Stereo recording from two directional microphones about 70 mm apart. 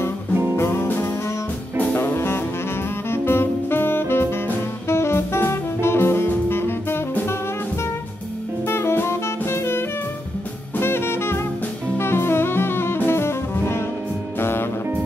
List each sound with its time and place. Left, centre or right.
0.6 s music: left
8.6 s music: left
10.8 s jazz: left
12.0 s music: left